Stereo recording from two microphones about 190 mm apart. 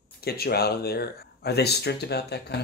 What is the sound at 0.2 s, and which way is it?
Speech, 55° left (ahead or behind).